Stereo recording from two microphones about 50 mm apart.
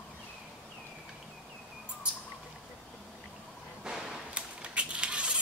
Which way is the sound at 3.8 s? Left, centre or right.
Centre.